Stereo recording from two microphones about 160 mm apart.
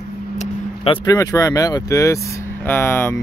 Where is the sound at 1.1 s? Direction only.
20° left (ahead or behind).